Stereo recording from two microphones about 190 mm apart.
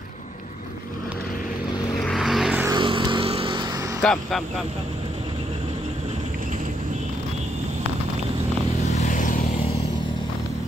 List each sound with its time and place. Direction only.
2.0 s vehicle: centre (ahead or behind)
2.7 s vehicle: 25° right (ahead or behind)
4.0 s speech: 5° left (ahead or behind)
8.9 s vehicle: 40° left (ahead or behind)